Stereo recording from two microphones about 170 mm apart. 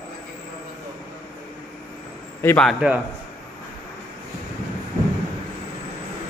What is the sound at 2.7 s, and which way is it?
Speech, 5° right (ahead or behind).